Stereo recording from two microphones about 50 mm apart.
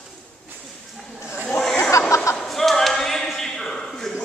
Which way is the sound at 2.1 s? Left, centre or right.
Left.